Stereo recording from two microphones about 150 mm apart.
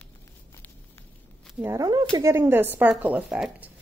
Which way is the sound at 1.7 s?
25° right (ahead or behind).